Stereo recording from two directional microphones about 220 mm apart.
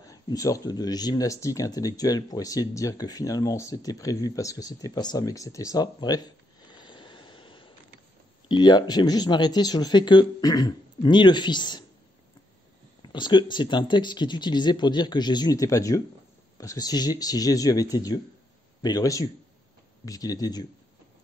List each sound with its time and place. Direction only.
0.0 s speech: 15° left (ahead or behind)
13.0 s speech: 20° left (ahead or behind)